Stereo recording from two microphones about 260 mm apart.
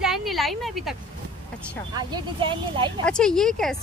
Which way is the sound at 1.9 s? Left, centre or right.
Centre.